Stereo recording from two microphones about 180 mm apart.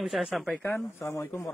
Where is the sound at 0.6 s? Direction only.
10° left (ahead or behind).